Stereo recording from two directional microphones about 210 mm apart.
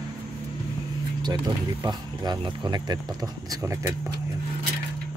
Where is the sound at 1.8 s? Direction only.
20° right (ahead or behind).